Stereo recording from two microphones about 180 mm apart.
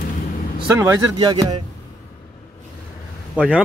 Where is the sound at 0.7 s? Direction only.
20° right (ahead or behind).